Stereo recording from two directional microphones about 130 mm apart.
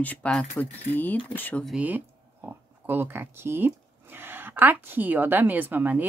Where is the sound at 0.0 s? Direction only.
10° left (ahead or behind).